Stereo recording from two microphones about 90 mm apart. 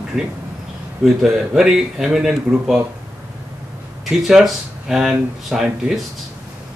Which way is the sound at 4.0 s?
5° right (ahead or behind).